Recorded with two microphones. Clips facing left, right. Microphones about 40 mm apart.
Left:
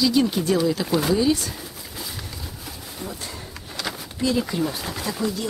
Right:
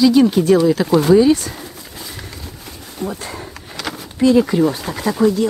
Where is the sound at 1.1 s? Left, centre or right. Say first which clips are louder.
Right 11 dB; right.